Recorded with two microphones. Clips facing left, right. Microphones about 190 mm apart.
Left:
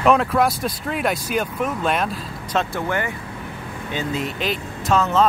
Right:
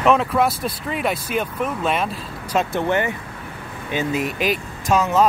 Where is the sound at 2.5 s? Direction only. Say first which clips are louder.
Right 3 dB; 20° right (ahead or behind).